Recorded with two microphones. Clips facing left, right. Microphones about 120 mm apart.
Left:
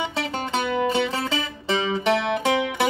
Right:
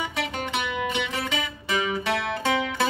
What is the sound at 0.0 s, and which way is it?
Music, 30° left (ahead or behind).